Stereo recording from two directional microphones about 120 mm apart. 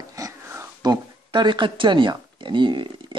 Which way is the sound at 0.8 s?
40° right (ahead or behind).